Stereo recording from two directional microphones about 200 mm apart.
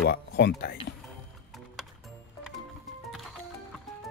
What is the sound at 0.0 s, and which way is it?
Speech, 55° left (ahead or behind).